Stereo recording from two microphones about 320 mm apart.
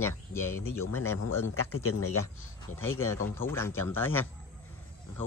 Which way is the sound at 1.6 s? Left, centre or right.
Left.